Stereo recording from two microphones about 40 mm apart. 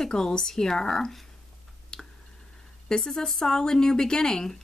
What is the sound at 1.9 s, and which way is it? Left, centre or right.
Clicking, centre.